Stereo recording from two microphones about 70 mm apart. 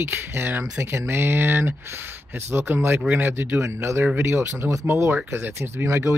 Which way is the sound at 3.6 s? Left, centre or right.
Right.